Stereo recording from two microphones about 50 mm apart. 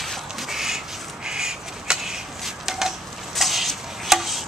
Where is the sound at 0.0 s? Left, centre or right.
Centre.